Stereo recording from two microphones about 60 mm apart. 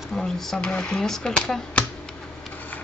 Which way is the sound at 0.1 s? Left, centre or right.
Centre.